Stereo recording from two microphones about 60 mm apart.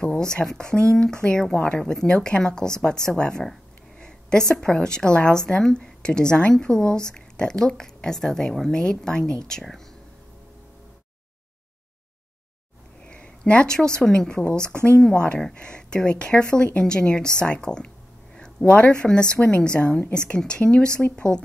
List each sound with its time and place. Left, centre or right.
0.0 s a woman's voice: centre
13.0 s a woman's voice: centre